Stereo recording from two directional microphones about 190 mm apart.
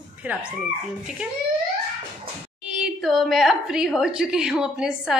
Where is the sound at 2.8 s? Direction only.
Centre (ahead or behind).